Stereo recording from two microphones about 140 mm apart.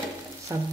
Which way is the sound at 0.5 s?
25° right (ahead or behind).